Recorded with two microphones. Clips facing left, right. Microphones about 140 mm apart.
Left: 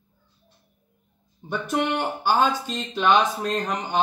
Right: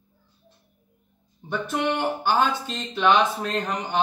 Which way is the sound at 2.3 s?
10° left (ahead or behind).